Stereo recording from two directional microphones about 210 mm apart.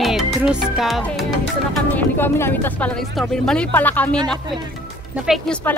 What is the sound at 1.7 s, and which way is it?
Speech, 5° left (ahead or behind).